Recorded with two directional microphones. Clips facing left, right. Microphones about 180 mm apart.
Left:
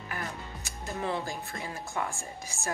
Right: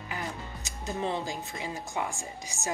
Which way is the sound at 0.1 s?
20° right (ahead or behind).